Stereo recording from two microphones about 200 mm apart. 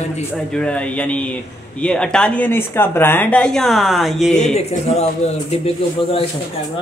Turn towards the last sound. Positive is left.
turn(degrees=30)  # may be behind; listen again after turning